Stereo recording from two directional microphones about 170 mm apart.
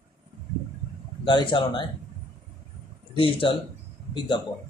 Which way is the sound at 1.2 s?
25° left (ahead or behind).